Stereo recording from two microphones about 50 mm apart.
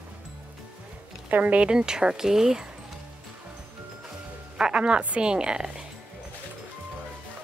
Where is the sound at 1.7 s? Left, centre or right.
Centre.